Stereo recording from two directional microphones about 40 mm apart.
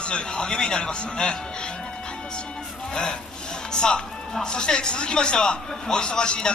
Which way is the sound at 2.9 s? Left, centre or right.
Centre.